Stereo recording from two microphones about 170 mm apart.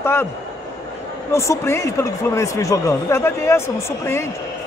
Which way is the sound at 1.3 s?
15° left (ahead or behind).